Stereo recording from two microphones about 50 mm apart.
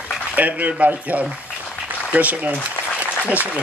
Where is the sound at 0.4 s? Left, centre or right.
Right.